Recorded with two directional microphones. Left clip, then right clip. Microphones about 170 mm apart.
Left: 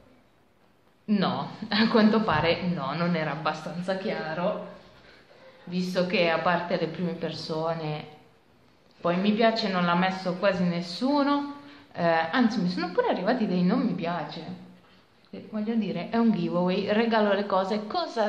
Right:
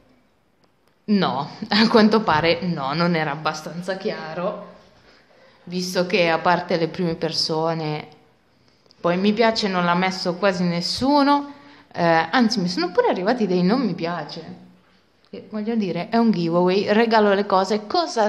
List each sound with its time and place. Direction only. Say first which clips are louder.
1.0 s a woman's voice: right 6 dB; 60° right (ahead or behind)
5.7 s a woman's voice: right 5 dB; 60° right (ahead or behind)